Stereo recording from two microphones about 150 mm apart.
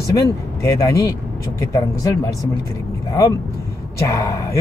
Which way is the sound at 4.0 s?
20° left (ahead or behind).